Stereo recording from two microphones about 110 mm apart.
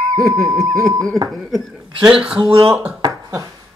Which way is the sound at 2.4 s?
55° right (ahead or behind).